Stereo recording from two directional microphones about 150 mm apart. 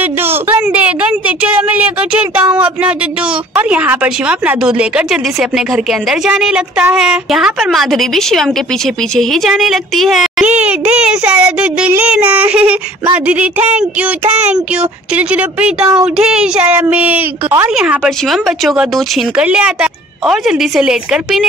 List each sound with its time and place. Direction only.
0.0 s a woman's voice: 15° right (ahead or behind)
10.6 s child singing: 10° right (ahead or behind)
14.3 s a sound: 45° right (ahead or behind)
14.8 s child singing: 10° right (ahead or behind)
17.7 s speech: 5° right (ahead or behind)